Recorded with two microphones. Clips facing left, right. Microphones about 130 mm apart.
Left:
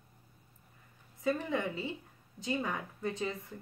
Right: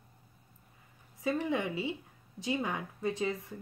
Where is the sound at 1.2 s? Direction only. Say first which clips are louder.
Right 1 dB; 15° right (ahead or behind).